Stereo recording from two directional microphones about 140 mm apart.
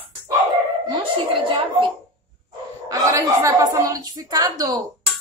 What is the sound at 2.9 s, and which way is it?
A woman's voice, 20° right (ahead or behind).